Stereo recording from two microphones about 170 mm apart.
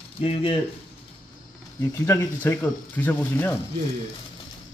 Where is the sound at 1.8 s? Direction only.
15° left (ahead or behind).